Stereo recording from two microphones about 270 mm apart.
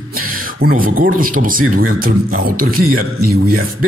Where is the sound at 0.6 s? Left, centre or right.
Right.